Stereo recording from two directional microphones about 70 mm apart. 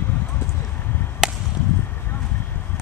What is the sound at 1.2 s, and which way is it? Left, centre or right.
Chop, centre.